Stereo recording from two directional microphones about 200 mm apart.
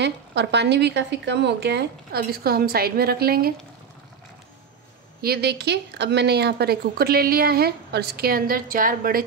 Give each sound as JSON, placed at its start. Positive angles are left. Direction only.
{"t": 0.0, "sound": "speech", "side_deg": -60}
{"t": 5.2, "sound": "a woman's voice", "side_deg": -55}